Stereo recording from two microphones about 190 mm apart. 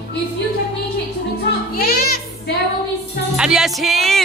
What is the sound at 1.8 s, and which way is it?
Music, 55° left (ahead or behind).